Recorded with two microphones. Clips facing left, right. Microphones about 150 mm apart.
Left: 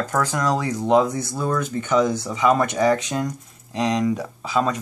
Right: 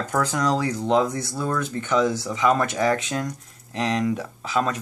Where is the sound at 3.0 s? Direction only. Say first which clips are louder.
Left 2 dB; centre (ahead or behind).